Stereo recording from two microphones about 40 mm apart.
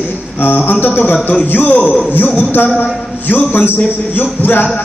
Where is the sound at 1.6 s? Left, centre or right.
Left.